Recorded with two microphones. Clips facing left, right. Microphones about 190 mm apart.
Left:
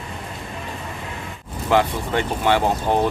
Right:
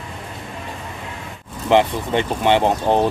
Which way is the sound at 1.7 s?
20° right (ahead or behind).